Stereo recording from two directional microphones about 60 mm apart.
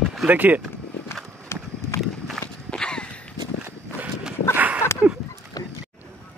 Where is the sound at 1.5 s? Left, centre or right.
Left.